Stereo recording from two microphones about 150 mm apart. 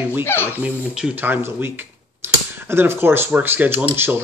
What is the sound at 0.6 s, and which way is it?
Speech, 5° right (ahead or behind).